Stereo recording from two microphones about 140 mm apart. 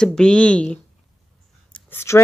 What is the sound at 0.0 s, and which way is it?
A woman's voice, 5° left (ahead or behind).